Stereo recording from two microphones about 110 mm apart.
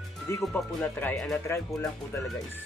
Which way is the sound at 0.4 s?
Centre (ahead or behind).